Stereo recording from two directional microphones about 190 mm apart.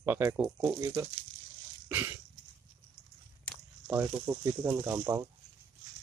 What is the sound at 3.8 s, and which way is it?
Speech, 15° right (ahead or behind).